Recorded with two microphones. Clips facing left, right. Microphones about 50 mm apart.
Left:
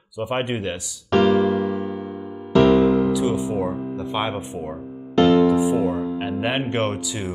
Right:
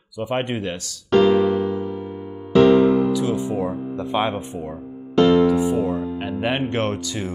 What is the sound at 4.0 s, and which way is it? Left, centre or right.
Speech, centre.